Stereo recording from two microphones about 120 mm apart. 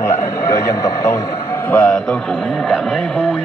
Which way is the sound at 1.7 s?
10° left (ahead or behind).